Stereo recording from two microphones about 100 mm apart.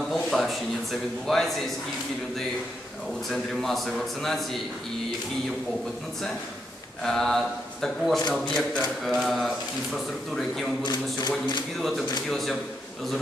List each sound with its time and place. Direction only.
0.1 s a sound: centre (ahead or behind)
1.2 s a man's voice: 5° left (ahead or behind)
3.3 s a man's voice: centre (ahead or behind)
7.0 s a man's voice: 5° left (ahead or behind)
10.8 s a sound: 45° left (ahead or behind)
12.3 s a man's voice: centre (ahead or behind)